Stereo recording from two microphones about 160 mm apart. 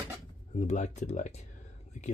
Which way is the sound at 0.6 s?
45° left (ahead or behind).